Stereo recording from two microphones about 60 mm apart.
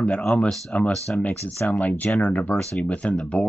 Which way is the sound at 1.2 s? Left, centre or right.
Left.